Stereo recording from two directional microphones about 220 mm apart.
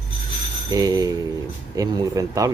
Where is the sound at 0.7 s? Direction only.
15° right (ahead or behind).